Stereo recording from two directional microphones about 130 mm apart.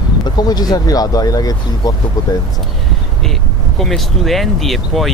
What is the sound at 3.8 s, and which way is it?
Speech, centre (ahead or behind).